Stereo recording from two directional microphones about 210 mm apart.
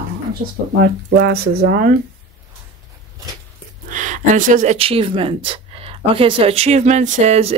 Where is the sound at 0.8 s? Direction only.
50° right (ahead or behind).